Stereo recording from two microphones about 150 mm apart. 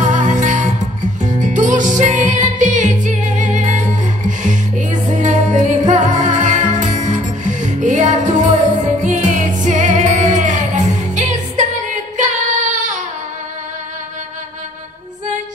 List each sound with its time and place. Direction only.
0.0 s music: 55° right (ahead or behind)